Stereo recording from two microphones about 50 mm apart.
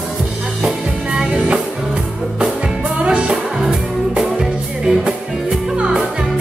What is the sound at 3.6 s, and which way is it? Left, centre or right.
Music, centre.